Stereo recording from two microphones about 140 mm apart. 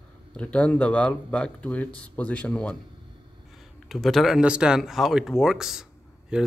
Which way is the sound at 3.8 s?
Centre (ahead or behind).